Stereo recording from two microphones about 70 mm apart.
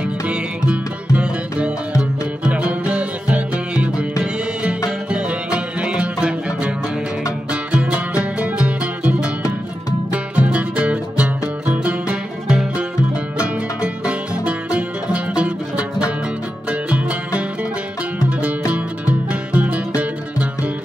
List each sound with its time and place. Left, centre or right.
0.7 s music: centre
5.1 s music: centre
7.7 s music: centre
13.7 s music: centre
18.7 s music: centre